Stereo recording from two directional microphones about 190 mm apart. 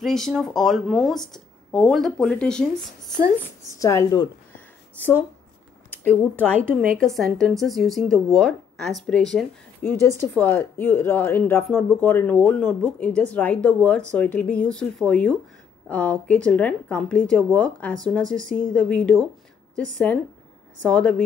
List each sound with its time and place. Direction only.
0.0 s speech: centre (ahead or behind)
3.8 s speech: 15° left (ahead or behind)